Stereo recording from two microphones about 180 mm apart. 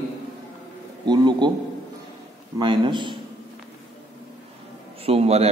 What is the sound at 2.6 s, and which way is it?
Speech, 25° right (ahead or behind).